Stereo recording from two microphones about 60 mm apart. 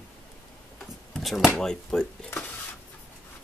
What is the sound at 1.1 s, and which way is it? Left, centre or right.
Speech, centre.